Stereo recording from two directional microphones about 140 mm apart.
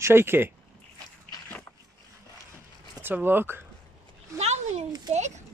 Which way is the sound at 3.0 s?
15° right (ahead or behind).